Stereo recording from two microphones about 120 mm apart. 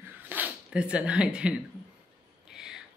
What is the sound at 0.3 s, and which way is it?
Speech, 10° right (ahead or behind).